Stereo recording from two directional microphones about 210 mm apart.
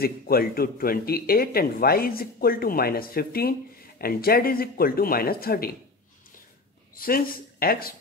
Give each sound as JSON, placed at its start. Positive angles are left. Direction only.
{"t": 0.0, "sound": "speech", "side_deg": 45}
{"t": 7.0, "sound": "speech", "side_deg": 45}